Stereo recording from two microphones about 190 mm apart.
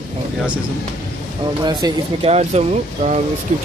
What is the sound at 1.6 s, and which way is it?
Speech, 25° right (ahead or behind).